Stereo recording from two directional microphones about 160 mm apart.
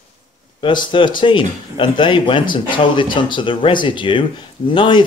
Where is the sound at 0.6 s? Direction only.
30° left (ahead or behind).